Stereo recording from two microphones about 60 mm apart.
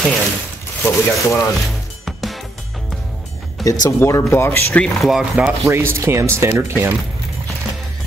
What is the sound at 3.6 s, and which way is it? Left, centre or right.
Speech, left.